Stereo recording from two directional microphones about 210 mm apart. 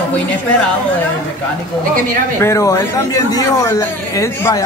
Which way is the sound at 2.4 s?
15° left (ahead or behind).